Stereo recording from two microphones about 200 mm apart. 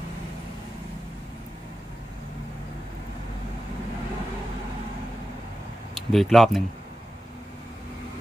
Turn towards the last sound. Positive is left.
turn(degrees=0)  # may be behind; listen again after turning